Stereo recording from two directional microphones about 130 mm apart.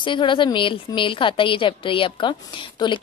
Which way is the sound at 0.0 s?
40° left (ahead or behind).